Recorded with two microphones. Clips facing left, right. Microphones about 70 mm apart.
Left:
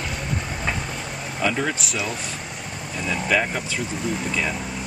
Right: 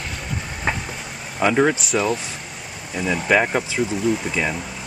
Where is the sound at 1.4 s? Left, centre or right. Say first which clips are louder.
Right 7 dB; right.